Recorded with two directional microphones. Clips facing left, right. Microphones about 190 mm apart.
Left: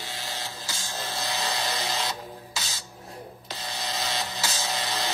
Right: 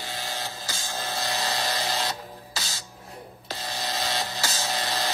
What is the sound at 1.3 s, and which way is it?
Music, 50° right (ahead or behind).